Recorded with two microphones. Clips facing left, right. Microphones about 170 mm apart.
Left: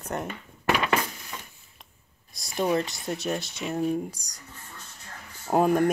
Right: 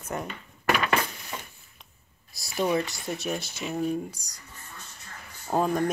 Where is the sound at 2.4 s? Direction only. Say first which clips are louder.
Even; 5° right (ahead or behind).